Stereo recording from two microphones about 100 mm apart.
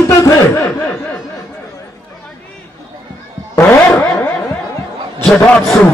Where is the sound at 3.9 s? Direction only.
20° left (ahead or behind).